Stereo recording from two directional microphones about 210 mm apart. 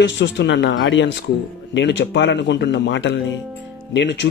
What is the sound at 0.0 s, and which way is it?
Speech, 60° left (ahead or behind).